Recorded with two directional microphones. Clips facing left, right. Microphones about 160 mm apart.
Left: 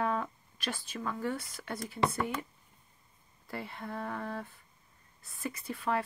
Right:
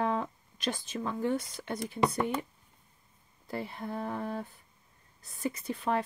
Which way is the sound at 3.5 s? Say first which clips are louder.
Right 4 dB; 20° right (ahead or behind).